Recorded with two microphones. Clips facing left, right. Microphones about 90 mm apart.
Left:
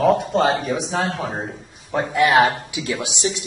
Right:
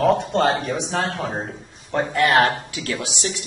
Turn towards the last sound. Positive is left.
turn(degrees=20)  # may be behind; listen again after turning